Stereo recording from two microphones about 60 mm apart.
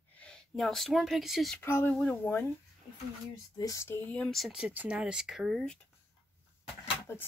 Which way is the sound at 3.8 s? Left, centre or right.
Left.